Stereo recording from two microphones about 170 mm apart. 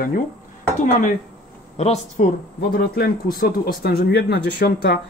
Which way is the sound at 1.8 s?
40° left (ahead or behind).